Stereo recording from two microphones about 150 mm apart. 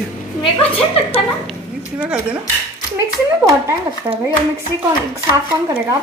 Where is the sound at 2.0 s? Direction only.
10° right (ahead or behind).